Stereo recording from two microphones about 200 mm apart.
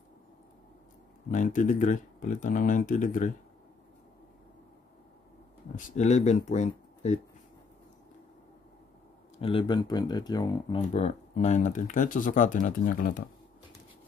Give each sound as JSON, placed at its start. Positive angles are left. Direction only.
{"t": 1.3, "sound": "speech", "side_deg": 40}
{"t": 5.8, "sound": "speech", "side_deg": 35}
{"t": 9.4, "sound": "speech", "side_deg": 25}
{"t": 10.8, "sound": "speech", "side_deg": 35}